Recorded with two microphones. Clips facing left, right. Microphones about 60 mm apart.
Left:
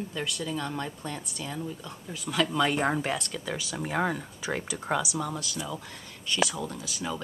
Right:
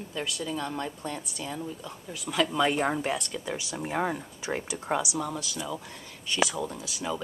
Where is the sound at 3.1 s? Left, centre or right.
Centre.